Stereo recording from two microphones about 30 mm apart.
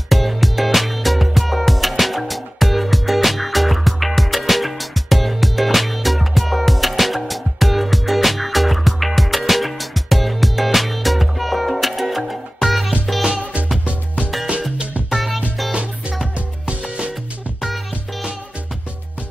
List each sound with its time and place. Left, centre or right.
0.1 s music: centre
15.7 s music: right